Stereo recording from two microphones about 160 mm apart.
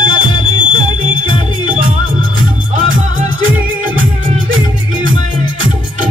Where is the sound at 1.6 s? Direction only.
60° right (ahead or behind).